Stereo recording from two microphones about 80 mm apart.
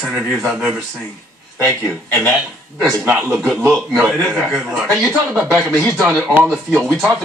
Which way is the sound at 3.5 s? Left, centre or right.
Right.